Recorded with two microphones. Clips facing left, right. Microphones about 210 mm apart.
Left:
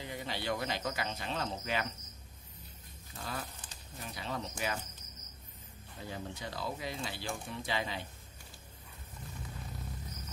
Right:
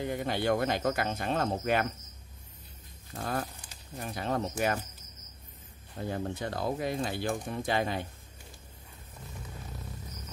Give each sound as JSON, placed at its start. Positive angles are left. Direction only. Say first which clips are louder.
{"t": 0.0, "sound": "speech", "louder": "right 9 dB", "side_deg": -55}
{"t": 3.1, "sound": "speech", "louder": "right 8 dB", "side_deg": -55}
{"t": 5.9, "sound": "speech", "louder": "right 9 dB", "side_deg": -55}